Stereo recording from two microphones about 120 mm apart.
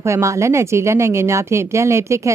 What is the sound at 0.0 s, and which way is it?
A woman's voice, 25° right (ahead or behind).